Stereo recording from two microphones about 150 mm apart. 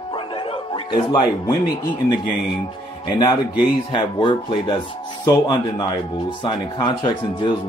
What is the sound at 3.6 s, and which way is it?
A man's voice, 30° left (ahead or behind).